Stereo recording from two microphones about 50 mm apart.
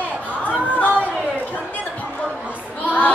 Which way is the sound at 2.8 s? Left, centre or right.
Left.